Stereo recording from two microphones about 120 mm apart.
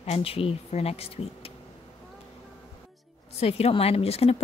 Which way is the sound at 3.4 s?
55° left (ahead or behind).